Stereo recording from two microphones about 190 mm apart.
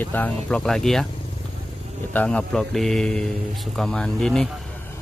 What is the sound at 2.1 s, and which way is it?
Speech, 5° left (ahead or behind).